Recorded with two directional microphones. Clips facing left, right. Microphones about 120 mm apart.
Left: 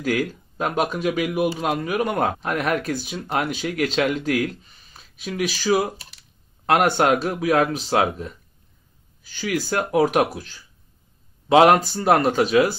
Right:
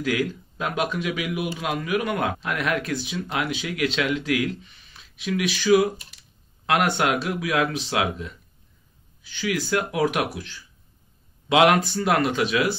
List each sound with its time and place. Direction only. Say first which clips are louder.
0.0 s a man's voice: left 1 dB; 45° left (ahead or behind)